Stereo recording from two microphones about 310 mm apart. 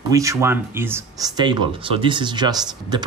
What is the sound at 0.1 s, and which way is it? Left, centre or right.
Speech, centre.